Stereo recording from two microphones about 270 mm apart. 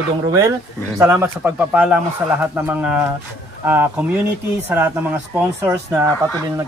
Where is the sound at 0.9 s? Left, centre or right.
Centre.